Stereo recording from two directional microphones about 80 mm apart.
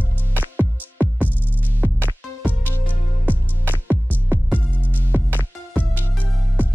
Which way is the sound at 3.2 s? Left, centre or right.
Right.